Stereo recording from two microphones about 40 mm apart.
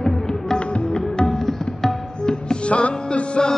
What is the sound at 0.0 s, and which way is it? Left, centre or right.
Music, centre.